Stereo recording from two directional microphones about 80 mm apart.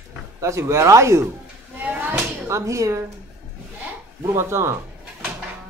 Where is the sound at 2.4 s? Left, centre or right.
Right.